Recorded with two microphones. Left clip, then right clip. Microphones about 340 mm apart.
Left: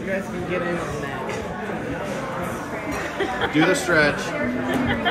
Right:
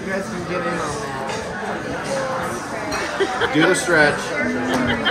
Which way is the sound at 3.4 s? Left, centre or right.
Right.